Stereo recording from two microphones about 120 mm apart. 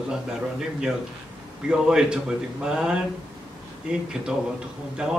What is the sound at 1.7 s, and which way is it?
A man's voice, 5° right (ahead or behind).